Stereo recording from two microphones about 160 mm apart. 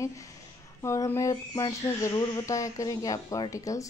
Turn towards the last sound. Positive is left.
turn(degrees=20)  # may be behind; listen again after turning